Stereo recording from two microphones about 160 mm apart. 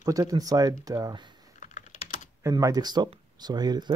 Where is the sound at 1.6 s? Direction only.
50° left (ahead or behind).